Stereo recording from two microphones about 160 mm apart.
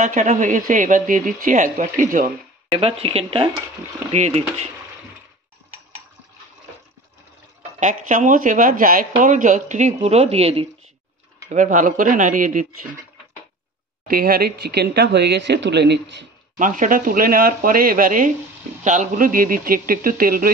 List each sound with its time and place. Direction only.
0.0 s speech: 50° right (ahead or behind)
2.8 s speech: 35° right (ahead or behind)
7.8 s speech: 50° right (ahead or behind)
11.4 s speech: 50° right (ahead or behind)
14.0 s speech: 65° right (ahead or behind); by 16.3 s 90° right
16.5 s speech: 55° right (ahead or behind)